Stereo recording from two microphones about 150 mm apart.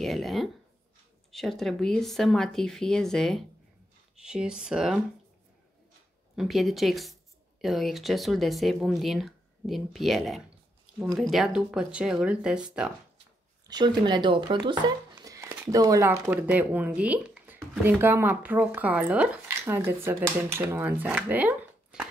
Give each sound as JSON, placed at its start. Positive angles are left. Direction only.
{"t": 0.0, "sound": "speech", "side_deg": 0}
{"t": 6.3, "sound": "speech", "side_deg": 0}
{"t": 13.7, "sound": "speech", "side_deg": -30}